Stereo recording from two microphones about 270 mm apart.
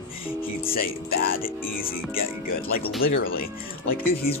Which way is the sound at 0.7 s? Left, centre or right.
Left.